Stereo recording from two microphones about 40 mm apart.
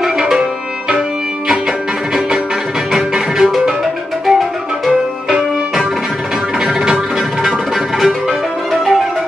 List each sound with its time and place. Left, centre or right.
0.0 s music: centre
2.9 s music: centre